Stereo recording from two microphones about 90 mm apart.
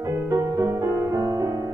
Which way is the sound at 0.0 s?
30° right (ahead or behind).